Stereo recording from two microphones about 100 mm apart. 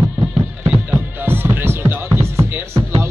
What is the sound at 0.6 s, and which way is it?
Music, 20° right (ahead or behind).